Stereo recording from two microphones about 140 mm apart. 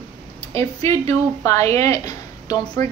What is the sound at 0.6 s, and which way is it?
A woman's voice, 20° left (ahead or behind).